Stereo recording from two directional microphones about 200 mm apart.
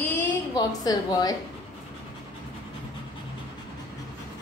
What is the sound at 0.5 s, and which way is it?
Speech, 20° left (ahead or behind).